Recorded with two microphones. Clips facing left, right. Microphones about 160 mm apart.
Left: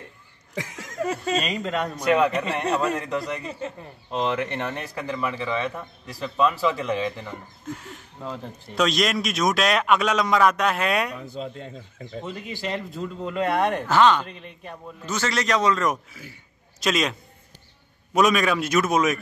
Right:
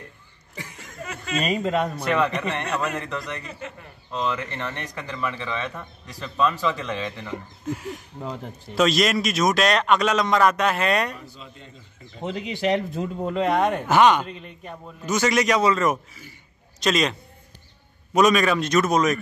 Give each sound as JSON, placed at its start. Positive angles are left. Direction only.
{"t": 0.6, "sound": "a sound", "side_deg": 90}
{"t": 1.0, "sound": "speech", "side_deg": 35}
{"t": 1.5, "sound": "a man's voice", "side_deg": -10}
{"t": 2.0, "sound": "speech", "side_deg": 10}
{"t": 2.6, "sound": "speech", "side_deg": 30}
{"t": 4.5, "sound": "speech", "side_deg": 15}
{"t": 4.7, "sound": "a man's voice", "side_deg": 5}
{"t": 7.7, "sound": "a man's voice", "side_deg": -10}
{"t": 11.1, "sound": "speech", "side_deg": 70}
{"t": 12.3, "sound": "speech", "side_deg": -80}
{"t": 13.3, "sound": "a man's voice", "side_deg": -20}